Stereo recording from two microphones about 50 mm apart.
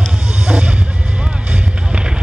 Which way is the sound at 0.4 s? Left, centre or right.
Right.